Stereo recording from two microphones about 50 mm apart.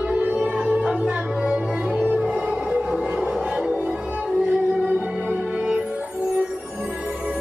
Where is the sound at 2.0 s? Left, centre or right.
Right.